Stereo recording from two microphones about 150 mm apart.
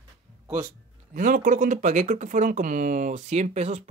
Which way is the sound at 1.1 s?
60° right (ahead or behind).